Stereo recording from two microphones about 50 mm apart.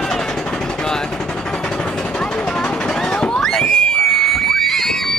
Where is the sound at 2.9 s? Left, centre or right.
Centre.